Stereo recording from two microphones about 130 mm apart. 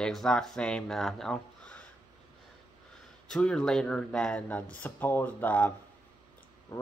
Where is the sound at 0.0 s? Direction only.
5° left (ahead or behind).